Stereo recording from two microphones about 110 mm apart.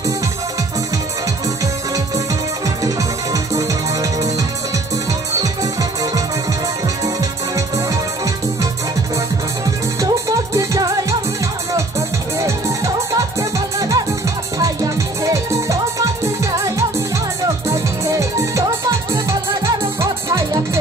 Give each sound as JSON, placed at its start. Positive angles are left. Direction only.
{"t": 3.5, "sound": "music", "side_deg": -30}
{"t": 9.9, "sound": "music", "side_deg": -30}
{"t": 12.4, "sound": "music", "side_deg": -30}